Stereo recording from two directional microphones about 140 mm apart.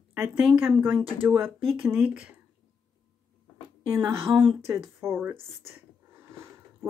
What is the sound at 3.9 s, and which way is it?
Speech, 20° right (ahead or behind).